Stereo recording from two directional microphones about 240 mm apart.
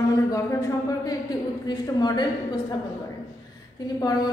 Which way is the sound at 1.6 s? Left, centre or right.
Centre.